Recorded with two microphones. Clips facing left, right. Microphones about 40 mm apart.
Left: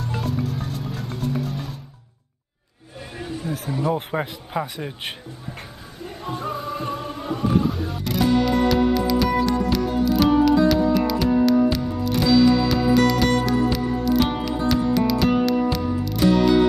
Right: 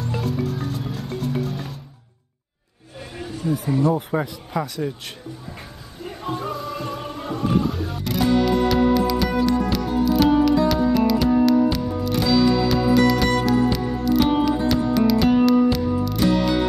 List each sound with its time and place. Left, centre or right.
0.1 s music: centre
3.2 s a sound: centre
4.1 s a man's voice: left
6.0 s music: centre
6.5 s music: centre
7.2 s music: centre